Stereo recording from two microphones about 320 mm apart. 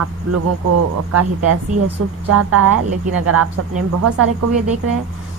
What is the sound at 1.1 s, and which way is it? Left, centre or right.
A woman's voice, right.